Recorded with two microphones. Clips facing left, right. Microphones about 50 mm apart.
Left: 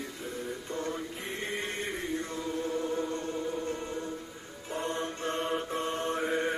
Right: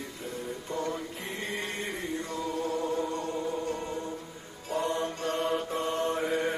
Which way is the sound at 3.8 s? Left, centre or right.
Centre.